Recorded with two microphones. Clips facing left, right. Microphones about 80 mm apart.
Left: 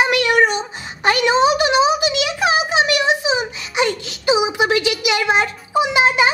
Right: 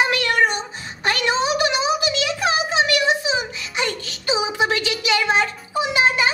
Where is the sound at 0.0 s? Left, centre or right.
Centre.